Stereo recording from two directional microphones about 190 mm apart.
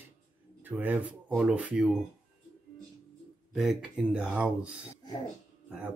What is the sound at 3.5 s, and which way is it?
Speech, 5° right (ahead or behind).